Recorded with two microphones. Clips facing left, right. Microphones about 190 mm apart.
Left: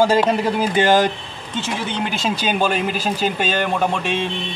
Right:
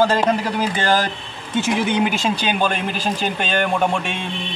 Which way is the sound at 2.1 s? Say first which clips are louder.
Even; 5° left (ahead or behind).